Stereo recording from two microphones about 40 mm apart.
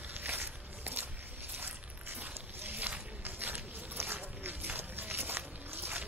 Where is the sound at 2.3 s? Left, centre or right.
Right.